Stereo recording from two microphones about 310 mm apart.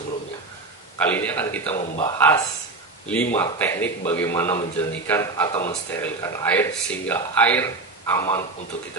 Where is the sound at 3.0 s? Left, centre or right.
Centre.